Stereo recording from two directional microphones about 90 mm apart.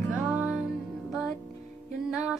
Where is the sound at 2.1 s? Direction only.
5° right (ahead or behind).